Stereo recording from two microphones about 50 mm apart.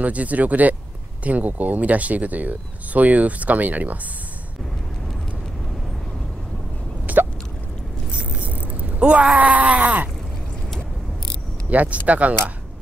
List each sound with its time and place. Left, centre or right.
0.0 s speech: right
7.1 s a sound: right
11.7 s speech: right